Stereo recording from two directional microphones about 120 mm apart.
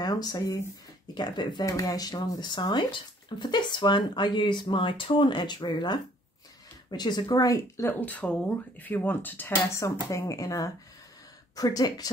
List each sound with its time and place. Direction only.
0.0 s speech: 30° left (ahead or behind)
8.0 s speech: 10° left (ahead or behind); by 12.1 s 30° left (ahead or behind)